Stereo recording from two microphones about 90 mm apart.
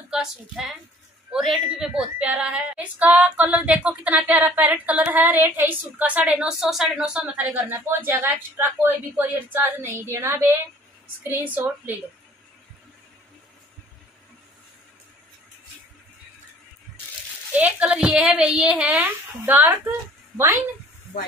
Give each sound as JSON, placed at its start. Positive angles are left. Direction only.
{"t": 0.1, "sound": "a woman's voice", "side_deg": -5}
{"t": 7.0, "sound": "a woman's voice", "side_deg": -15}
{"t": 17.5, "sound": "a woman's voice", "side_deg": -15}
{"t": 19.4, "sound": "a woman's voice", "side_deg": -20}